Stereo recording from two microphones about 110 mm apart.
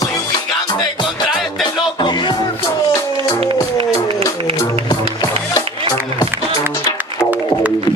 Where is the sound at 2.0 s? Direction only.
40° left (ahead or behind).